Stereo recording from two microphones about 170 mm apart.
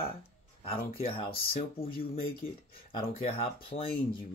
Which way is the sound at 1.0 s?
35° left (ahead or behind).